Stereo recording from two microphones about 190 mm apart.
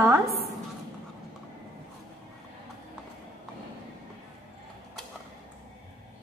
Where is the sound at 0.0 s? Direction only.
15° right (ahead or behind).